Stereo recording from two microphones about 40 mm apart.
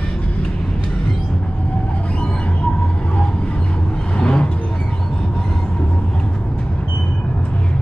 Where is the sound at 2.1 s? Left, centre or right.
Left.